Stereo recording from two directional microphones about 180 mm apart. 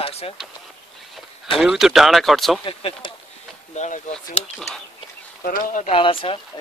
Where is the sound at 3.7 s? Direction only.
45° left (ahead or behind).